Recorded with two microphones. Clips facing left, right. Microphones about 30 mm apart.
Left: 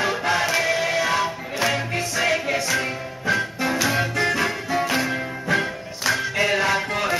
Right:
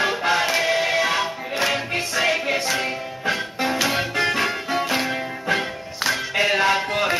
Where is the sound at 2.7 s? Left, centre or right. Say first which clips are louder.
Even; right.